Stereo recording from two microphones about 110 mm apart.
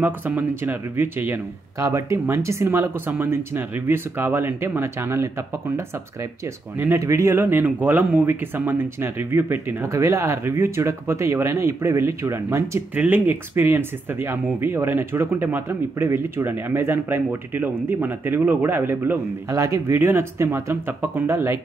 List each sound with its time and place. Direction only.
0.3 s speech: 15° right (ahead or behind)
6.8 s speech: 25° right (ahead or behind)